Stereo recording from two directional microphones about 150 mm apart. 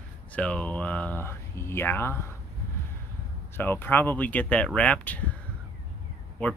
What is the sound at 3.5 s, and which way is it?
Speech, 15° left (ahead or behind).